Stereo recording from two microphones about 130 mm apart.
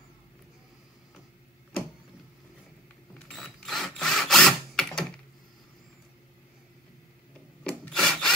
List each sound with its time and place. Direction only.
3.2 s sewing machine: 5° left (ahead or behind)
7.6 s rub: 5° left (ahead or behind)